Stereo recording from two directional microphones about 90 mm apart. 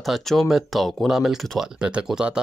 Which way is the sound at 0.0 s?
Centre (ahead or behind).